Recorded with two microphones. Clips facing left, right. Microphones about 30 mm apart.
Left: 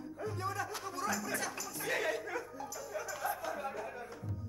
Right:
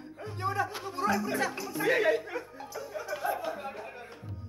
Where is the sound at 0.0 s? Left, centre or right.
Right.